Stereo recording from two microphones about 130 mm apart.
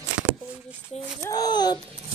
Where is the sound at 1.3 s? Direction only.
30° left (ahead or behind).